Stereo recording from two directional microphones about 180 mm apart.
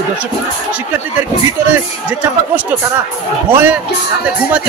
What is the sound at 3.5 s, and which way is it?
Speech, 10° right (ahead or behind).